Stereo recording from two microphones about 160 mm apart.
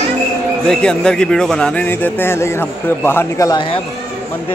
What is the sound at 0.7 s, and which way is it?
Speech, 5° left (ahead or behind).